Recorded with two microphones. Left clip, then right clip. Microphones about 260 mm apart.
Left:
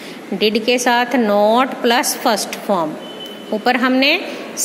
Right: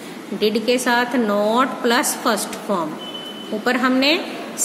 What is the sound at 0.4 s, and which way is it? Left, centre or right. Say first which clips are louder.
A woman's voice: left 3 dB; left.